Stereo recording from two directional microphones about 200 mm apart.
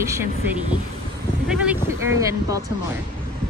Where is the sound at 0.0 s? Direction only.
15° right (ahead or behind).